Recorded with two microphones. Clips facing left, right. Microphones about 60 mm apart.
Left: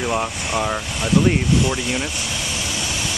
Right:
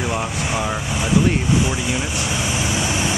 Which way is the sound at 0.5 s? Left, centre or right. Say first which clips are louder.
Even; centre.